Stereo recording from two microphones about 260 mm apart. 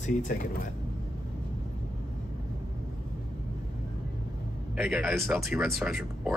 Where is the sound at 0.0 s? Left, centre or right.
Left.